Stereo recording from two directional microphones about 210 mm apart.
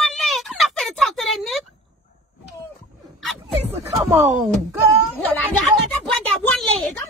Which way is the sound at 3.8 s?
15° right (ahead or behind).